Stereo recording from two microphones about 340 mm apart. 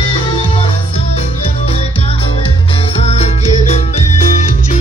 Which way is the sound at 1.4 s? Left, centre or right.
Centre.